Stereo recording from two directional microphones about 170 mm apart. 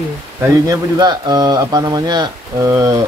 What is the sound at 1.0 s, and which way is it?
Speech, 25° right (ahead or behind).